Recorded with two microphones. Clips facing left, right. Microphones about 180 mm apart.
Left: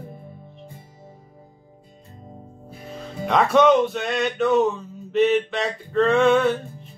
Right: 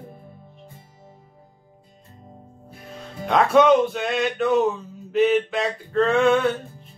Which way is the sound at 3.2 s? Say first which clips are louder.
Right 1 dB; centre (ahead or behind).